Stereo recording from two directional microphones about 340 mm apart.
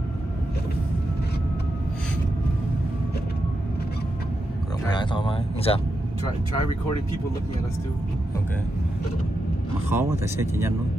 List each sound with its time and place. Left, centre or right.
4.8 s speech: centre
9.8 s speech: centre